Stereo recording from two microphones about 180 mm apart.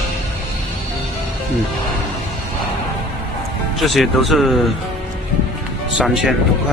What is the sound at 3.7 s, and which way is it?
Speech, centre (ahead or behind).